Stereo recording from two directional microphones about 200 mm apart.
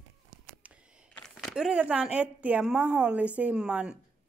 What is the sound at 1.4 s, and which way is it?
Speech, centre (ahead or behind).